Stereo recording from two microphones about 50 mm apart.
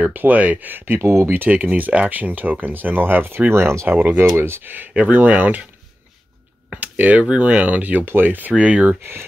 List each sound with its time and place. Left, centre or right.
0.0 s speech: right
1.0 s speech: right
1.5 s speech: right
3.9 s speech: right
4.4 s speech: right
6.7 s a sound: right
7.2 s speech: right
8.0 s speech: right
8.5 s speech: right